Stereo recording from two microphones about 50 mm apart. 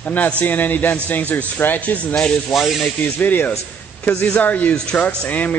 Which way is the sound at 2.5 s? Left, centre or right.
Centre.